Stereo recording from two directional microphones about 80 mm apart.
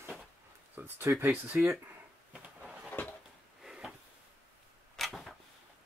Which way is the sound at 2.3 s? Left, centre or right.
Centre.